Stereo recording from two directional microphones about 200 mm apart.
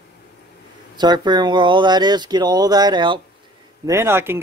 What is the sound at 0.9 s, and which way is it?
Speech, 20° right (ahead or behind).